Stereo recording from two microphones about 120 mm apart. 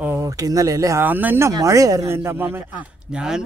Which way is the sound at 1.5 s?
25° right (ahead or behind).